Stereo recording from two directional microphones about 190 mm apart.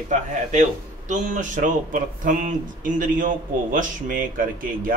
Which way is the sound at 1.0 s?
40° right (ahead or behind).